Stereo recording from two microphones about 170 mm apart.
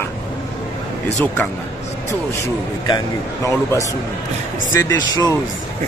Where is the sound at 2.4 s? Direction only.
20° left (ahead or behind).